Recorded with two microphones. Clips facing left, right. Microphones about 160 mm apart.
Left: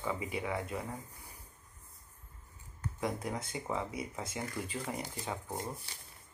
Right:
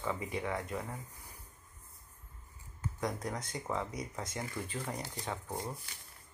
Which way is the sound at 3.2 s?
25° left (ahead or behind).